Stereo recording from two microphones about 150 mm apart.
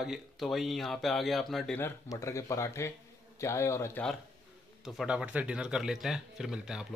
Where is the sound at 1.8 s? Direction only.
20° left (ahead or behind).